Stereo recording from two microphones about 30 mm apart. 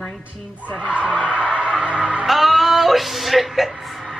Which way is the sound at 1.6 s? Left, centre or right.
Right.